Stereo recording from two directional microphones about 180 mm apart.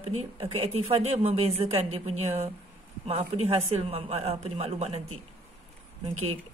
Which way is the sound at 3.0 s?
35° right (ahead or behind).